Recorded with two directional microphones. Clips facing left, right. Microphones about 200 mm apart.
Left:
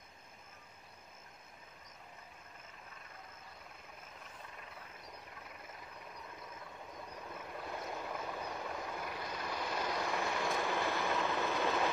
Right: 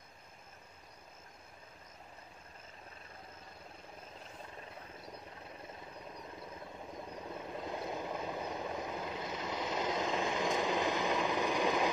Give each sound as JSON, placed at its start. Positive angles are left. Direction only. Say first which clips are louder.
{"t": 6.5, "sound": "vehicle", "louder": "right 4 dB", "side_deg": -25}